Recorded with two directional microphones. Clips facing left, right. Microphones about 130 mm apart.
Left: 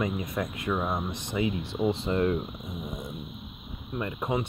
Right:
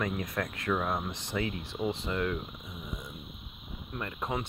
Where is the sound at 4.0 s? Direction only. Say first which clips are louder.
Left 5 dB; 15° left (ahead or behind).